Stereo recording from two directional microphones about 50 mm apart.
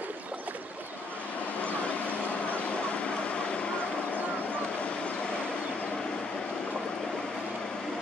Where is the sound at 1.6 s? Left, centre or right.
Left.